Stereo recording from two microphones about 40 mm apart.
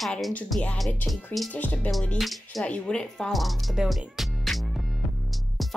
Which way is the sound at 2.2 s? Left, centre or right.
Centre.